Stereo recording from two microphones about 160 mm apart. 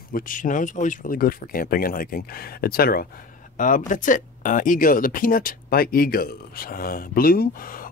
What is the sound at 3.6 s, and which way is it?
Speech, 55° left (ahead or behind).